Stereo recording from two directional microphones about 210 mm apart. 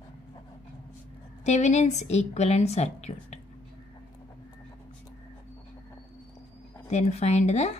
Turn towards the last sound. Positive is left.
turn(degrees=30)  # may be behind; listen again after turning